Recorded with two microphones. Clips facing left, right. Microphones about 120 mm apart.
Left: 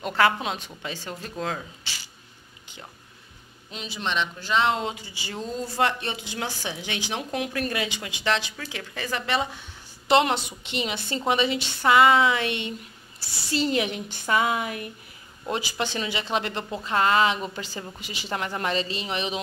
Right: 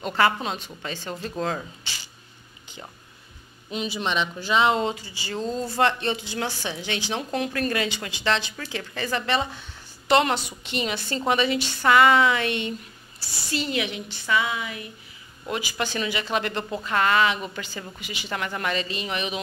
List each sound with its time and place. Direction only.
0.0 s a woman's voice: 5° left (ahead or behind)
3.7 s speech: 5° right (ahead or behind)
4.9 s a woman's voice: 15° left (ahead or behind)
10.0 s speech: 20° left (ahead or behind)
13.5 s speech: 35° left (ahead or behind); by 14.9 s 50° left (ahead or behind)
15.4 s speech: 30° left (ahead or behind)